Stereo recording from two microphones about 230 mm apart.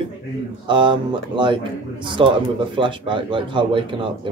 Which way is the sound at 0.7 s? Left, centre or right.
Right.